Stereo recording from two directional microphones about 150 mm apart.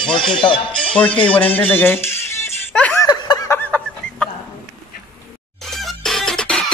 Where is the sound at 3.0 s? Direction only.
20° left (ahead or behind).